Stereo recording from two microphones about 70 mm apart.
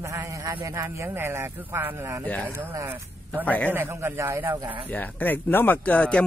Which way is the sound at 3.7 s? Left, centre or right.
Right.